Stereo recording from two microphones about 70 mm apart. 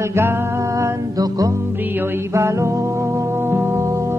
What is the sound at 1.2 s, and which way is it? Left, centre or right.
Music, right.